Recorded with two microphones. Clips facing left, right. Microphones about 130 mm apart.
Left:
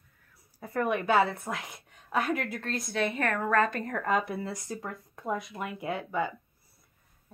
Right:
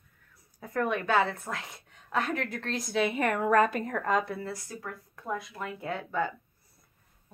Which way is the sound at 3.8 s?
Centre (ahead or behind).